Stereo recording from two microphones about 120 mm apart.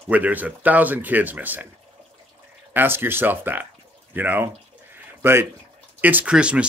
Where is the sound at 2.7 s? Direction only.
15° right (ahead or behind).